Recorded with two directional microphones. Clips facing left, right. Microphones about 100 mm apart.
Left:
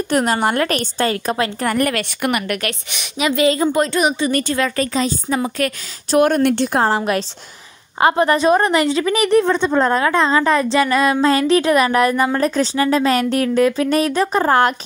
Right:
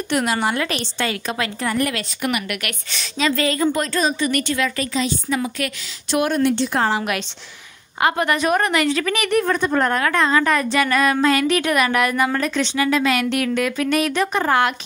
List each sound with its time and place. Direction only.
0.1 s a woman's voice: 45° left (ahead or behind)
1.6 s a woman's voice: 50° left (ahead or behind)
2.4 s a woman's voice: 40° left (ahead or behind)
2.9 s a woman's voice: 15° left (ahead or behind); by 7.0 s 45° left (ahead or behind)
8.0 s a woman's voice: 30° left (ahead or behind)